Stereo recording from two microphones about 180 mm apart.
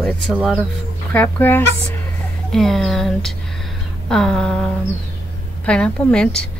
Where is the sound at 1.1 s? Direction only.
10° left (ahead or behind).